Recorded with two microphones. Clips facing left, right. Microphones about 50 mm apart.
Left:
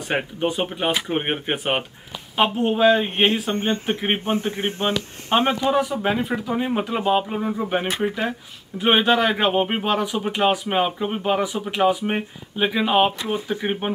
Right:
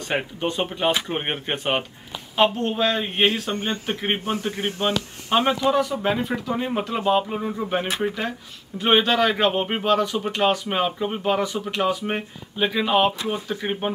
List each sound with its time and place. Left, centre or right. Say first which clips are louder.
0.1 s speech: left 2 dB; centre
3.5 s speech: left 4 dB; left
4.2 s a man's voice: left 2 dB; left
5.6 s speech: even; centre